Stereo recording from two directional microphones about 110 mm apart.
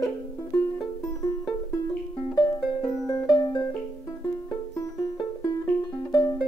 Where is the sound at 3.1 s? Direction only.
40° left (ahead or behind).